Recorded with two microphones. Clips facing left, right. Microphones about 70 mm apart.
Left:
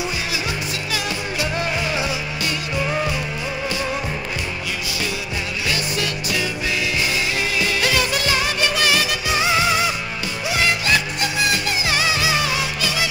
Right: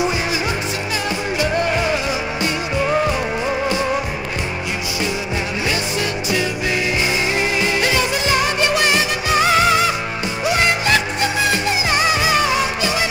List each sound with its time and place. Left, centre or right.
5.7 s music: centre
8.3 s music: centre
8.9 s music: right
11.9 s music: right